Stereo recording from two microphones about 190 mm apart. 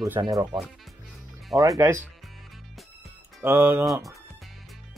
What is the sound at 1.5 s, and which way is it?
Speech, centre (ahead or behind).